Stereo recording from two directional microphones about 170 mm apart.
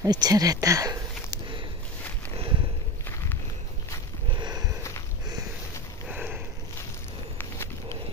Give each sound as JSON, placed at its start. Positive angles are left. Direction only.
{"t": 0.0, "sound": "speech", "side_deg": -20}
{"t": 4.3, "sound": "sniff", "side_deg": -25}
{"t": 6.0, "sound": "a sound", "side_deg": -10}
{"t": 7.3, "sound": "walk", "side_deg": 15}